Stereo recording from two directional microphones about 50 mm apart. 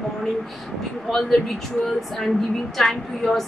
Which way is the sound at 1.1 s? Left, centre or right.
Centre.